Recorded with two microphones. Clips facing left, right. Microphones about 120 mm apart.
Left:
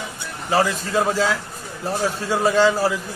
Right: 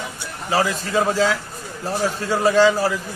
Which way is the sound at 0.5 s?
Centre (ahead or behind).